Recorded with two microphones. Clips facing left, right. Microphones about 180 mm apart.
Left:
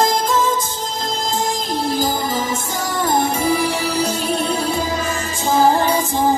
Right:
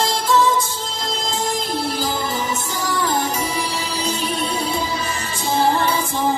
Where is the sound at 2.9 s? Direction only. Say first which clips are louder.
Left 3 dB; 45° left (ahead or behind).